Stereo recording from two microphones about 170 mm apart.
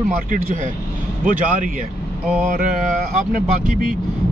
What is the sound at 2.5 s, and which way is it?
Speech, 50° right (ahead or behind).